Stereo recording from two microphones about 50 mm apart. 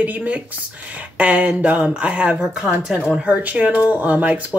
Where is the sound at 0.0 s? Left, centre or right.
Right; by 3.0 s centre.